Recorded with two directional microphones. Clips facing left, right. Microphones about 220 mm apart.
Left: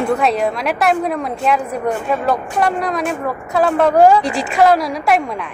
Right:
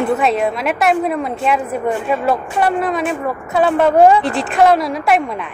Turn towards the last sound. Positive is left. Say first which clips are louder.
# even
turn(degrees=0)  # may be behind; listen again after turning